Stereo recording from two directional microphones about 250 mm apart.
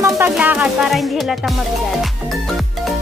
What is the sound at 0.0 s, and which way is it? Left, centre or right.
Speech, centre.